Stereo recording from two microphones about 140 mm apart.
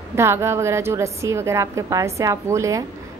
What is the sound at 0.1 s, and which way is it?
A woman's voice, 20° right (ahead or behind).